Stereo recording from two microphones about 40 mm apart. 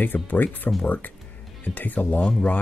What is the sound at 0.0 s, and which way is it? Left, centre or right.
Speech, left.